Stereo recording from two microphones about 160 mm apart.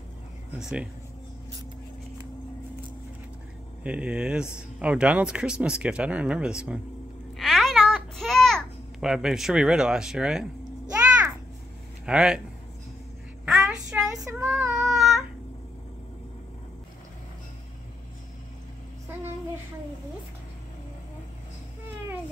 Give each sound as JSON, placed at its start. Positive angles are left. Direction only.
{"t": 0.6, "sound": "speech", "side_deg": -5}
{"t": 3.8, "sound": "speech", "side_deg": -5}
{"t": 7.3, "sound": "babbling", "side_deg": 0}
{"t": 12.1, "sound": "speech", "side_deg": -5}
{"t": 13.5, "sound": "child singing", "side_deg": -5}